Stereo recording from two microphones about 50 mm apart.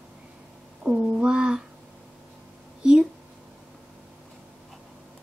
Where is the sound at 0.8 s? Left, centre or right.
Right.